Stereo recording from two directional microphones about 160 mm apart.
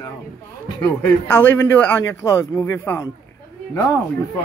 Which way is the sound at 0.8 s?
15° left (ahead or behind).